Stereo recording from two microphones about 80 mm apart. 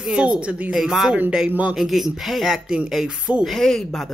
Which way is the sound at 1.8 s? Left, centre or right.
Centre.